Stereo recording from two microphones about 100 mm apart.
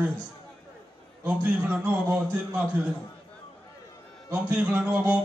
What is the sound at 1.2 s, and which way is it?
A man's voice, 20° right (ahead or behind).